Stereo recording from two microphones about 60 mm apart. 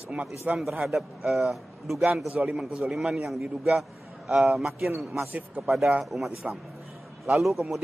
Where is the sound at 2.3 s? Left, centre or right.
Centre.